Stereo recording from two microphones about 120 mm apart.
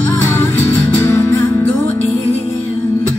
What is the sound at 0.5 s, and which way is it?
Music, 20° left (ahead or behind).